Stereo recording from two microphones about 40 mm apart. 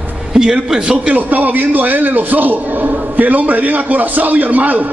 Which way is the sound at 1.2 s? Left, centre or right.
Right.